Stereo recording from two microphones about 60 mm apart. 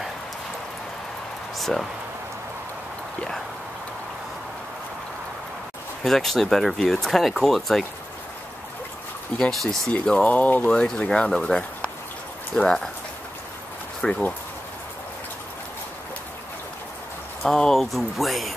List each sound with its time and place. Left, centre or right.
1.6 s speech: centre
6.0 s speech: centre
9.4 s speech: centre
9.9 s speech: centre
10.7 s speech: centre
14.0 s speech: centre
17.5 s speech: centre